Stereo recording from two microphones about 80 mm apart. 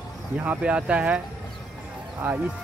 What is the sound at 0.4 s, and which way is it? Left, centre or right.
Speech, centre.